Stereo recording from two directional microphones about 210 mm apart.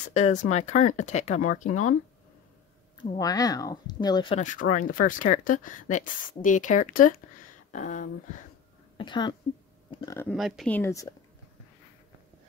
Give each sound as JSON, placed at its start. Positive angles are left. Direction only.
{"t": 0.1, "sound": "speech", "side_deg": 35}
{"t": 3.0, "sound": "speech", "side_deg": 15}
{"t": 4.4, "sound": "speech", "side_deg": 40}
{"t": 8.9, "sound": "speech", "side_deg": 20}
{"t": 10.2, "sound": "speech", "side_deg": 0}
{"t": 10.8, "sound": "a woman's voice", "side_deg": 15}